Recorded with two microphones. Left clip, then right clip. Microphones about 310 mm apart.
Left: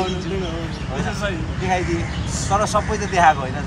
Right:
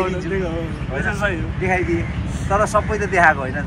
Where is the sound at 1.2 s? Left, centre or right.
Centre.